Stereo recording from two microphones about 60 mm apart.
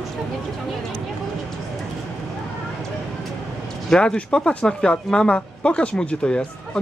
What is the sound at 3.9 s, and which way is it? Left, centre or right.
Speech, centre.